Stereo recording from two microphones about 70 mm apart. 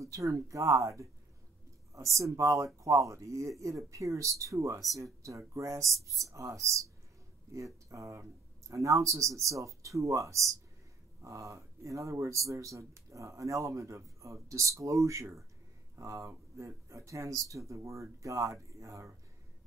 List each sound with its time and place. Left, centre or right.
0.0 s speech: right